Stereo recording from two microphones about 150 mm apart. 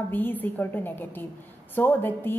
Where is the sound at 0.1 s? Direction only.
10° left (ahead or behind).